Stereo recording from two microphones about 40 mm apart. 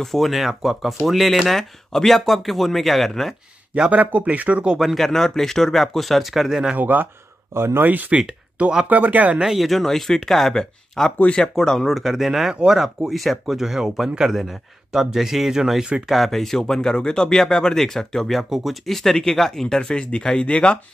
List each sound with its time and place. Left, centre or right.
0.0 s speech: centre
1.5 s speech: centre
3.9 s speech: right
4.9 s speech: centre
6.8 s speech: right
7.5 s speech: right
7.8 s speech: right
9.4 s speech: centre
11.9 s speech: centre
13.6 s speech: centre
16.1 s speech: centre
18.5 s speech: centre
18.9 s speech: centre
19.8 s speech: left